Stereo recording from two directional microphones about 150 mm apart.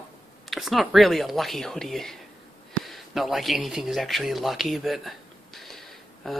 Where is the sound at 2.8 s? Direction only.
Centre (ahead or behind).